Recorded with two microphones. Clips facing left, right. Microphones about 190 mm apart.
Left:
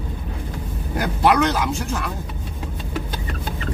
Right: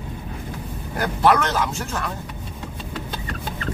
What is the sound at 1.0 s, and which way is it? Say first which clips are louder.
Speech: left 1 dB; 15° left (ahead or behind).